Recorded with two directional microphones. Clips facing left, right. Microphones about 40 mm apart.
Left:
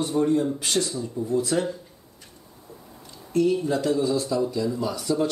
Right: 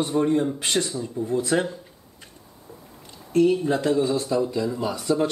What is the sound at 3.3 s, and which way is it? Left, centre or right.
Speech, right.